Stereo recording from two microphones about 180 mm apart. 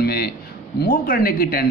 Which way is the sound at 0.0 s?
60° left (ahead or behind).